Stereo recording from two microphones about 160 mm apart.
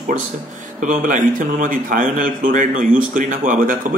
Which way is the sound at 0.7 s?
55° right (ahead or behind).